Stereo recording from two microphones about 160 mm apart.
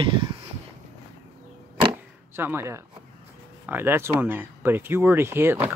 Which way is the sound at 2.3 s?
15° right (ahead or behind).